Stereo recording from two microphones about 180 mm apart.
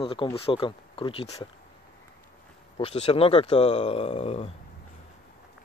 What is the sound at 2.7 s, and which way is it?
Speech, 35° left (ahead or behind).